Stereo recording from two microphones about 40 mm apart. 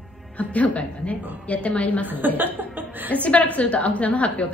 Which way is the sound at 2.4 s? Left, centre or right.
Right.